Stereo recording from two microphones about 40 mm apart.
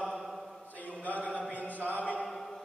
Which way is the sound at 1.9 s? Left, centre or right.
Left.